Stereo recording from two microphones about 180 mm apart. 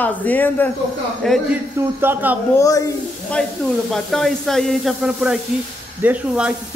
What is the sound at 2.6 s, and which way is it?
Speech, 20° left (ahead or behind).